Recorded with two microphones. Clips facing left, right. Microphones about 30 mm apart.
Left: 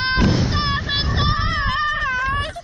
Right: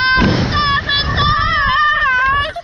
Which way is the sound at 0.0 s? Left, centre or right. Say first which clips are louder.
Right 6 dB; right.